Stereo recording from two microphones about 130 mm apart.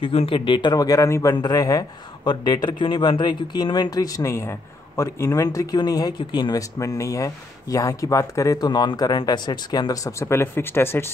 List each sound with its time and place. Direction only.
0.0 s a man's voice: 45° left (ahead or behind); by 11.1 s 15° left (ahead or behind)